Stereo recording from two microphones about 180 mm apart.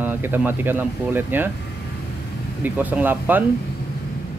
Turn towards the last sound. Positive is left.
turn(degrees=-10)  # may be behind; listen again after turning